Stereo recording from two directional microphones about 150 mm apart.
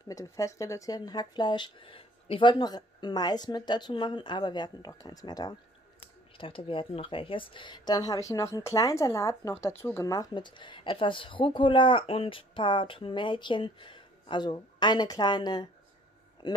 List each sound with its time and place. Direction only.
0.1 s speech: 20° left (ahead or behind)